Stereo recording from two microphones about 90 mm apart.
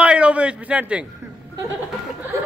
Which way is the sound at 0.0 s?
15° right (ahead or behind).